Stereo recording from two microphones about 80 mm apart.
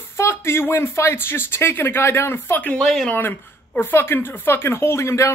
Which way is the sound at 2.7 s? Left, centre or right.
Centre.